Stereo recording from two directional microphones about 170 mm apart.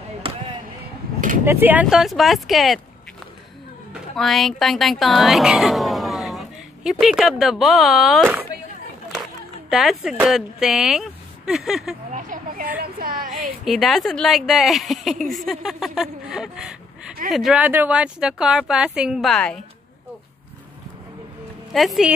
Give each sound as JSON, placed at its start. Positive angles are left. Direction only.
{"t": 0.2, "sound": "a sound", "side_deg": -30}
{"t": 1.4, "sound": "speech", "side_deg": -10}
{"t": 4.2, "sound": "speech", "side_deg": 0}
{"t": 12.1, "sound": "a sound", "side_deg": -50}
{"t": 13.7, "sound": "speech", "side_deg": 0}
{"t": 21.7, "sound": "speech", "side_deg": 0}